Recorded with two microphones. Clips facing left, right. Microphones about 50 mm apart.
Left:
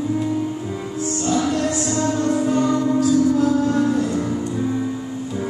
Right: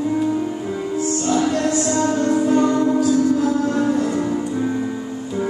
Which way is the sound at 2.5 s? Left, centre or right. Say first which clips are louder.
Right 2 dB; right.